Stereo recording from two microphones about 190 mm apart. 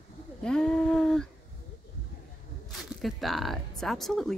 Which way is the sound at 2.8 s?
Centre (ahead or behind).